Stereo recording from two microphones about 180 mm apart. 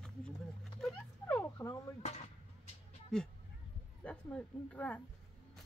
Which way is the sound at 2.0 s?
40° left (ahead or behind).